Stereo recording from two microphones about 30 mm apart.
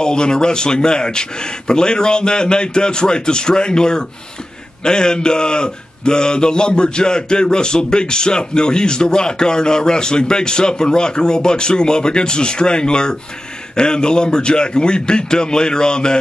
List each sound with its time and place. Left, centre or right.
0.0 s a man's voice: left